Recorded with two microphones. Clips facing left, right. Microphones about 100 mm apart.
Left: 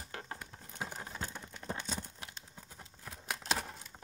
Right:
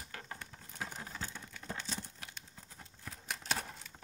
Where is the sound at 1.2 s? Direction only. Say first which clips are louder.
Left 3 dB; 20° left (ahead or behind).